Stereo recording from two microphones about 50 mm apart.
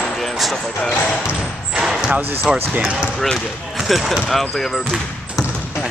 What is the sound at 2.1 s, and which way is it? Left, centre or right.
Speech, right.